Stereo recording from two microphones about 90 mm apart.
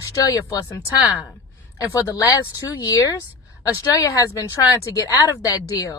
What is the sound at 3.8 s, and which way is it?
Speech, 40° left (ahead or behind).